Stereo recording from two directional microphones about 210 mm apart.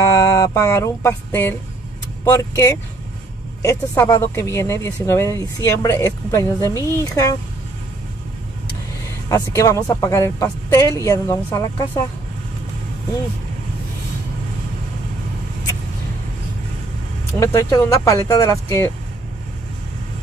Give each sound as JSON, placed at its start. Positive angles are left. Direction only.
{"t": 0.0, "sound": "music", "side_deg": 15}
{"t": 2.2, "sound": "speech", "side_deg": 15}
{"t": 9.3, "sound": "speech", "side_deg": 15}
{"t": 17.3, "sound": "speech", "side_deg": 15}